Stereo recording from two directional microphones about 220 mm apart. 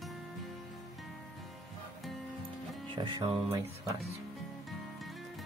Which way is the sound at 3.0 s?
20° right (ahead or behind).